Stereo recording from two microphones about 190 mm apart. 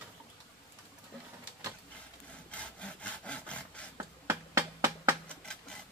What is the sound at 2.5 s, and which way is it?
Wood, 5° left (ahead or behind).